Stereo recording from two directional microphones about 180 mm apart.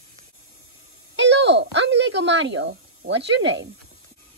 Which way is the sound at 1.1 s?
75° right (ahead or behind).